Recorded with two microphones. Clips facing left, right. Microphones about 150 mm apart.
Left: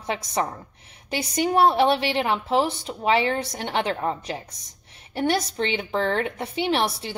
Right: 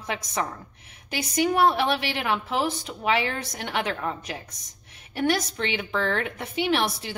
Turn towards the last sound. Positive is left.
turn(degrees=30)  # may be behind; listen again after turning